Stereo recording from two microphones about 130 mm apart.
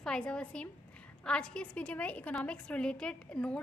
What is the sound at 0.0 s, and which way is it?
A woman's voice, 5° left (ahead or behind).